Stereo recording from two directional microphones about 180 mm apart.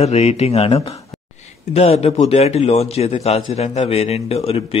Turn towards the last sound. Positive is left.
turn(degrees=35)  # may be behind; listen again after turning